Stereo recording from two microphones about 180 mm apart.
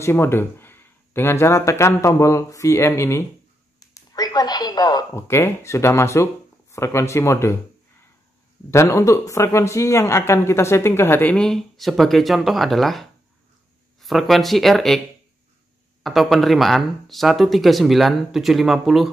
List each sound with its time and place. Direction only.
0.0 s speech: 15° left (ahead or behind)
3.9 s a sound: 20° left (ahead or behind)
6.7 s speech: 15° left (ahead or behind)
8.6 s speech: 15° left (ahead or behind)
16.0 s speech: centre (ahead or behind)